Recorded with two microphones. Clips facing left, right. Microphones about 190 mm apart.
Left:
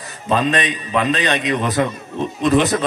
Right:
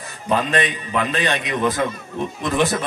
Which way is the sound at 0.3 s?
20° left (ahead or behind).